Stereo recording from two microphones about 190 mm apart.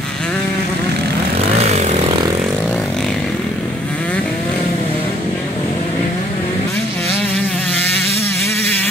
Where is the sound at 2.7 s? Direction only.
5° left (ahead or behind).